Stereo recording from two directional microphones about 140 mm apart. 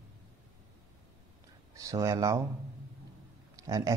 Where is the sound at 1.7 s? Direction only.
20° right (ahead or behind).